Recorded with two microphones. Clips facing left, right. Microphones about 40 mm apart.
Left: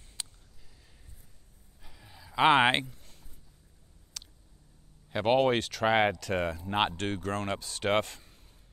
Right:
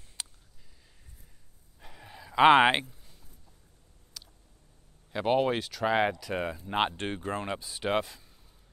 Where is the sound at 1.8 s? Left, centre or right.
Right.